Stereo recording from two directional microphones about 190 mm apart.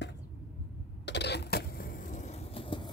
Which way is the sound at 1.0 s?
65° left (ahead or behind).